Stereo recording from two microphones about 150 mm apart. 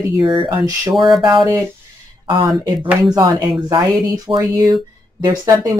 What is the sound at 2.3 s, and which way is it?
Speech, 30° right (ahead or behind).